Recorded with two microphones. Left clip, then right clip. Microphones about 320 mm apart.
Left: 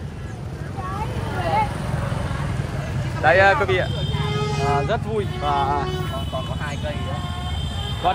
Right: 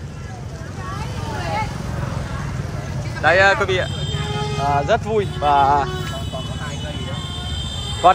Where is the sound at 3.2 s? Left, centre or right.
Centre.